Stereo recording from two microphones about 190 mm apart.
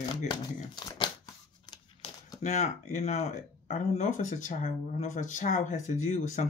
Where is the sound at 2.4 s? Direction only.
35° left (ahead or behind).